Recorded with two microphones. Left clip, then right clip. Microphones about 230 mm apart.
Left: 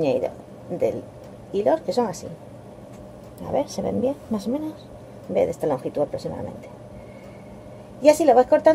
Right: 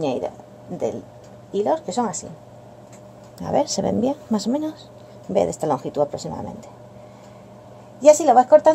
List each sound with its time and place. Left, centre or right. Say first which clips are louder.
0.0 s a woman's voice: left 2 dB; right
1.5 s a woman's voice: left 1 dB; right
3.4 s speech: right 4 dB; right
8.0 s a woman's voice: right 2 dB; right